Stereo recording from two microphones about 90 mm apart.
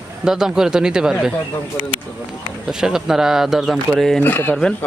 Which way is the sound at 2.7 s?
5° right (ahead or behind).